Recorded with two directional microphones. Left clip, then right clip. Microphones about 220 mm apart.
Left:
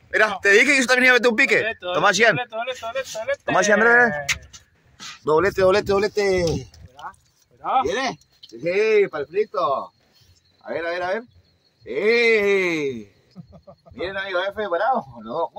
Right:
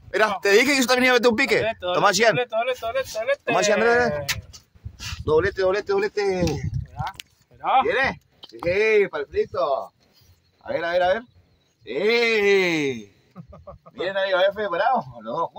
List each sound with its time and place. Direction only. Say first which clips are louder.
0.1 s a man's voice: left 2 dB; 10° right (ahead or behind)
2.3 s speech: right 3 dB; 50° right (ahead or behind)
3.5 s speech: left 4 dB; 20° left (ahead or behind)
5.2 s speech: left 2 dB; 30° left (ahead or behind)
5.7 s speech: left 4 dB; 50° left (ahead or behind)
7.8 s speech: right 2 dB; 40° left (ahead or behind)
10.6 s a man's voice: right 4 dB; 30° right (ahead or behind)
13.4 s a sound: right 2 dB; 30° right (ahead or behind)
13.9 s speech: right 3 dB; 30° right (ahead or behind)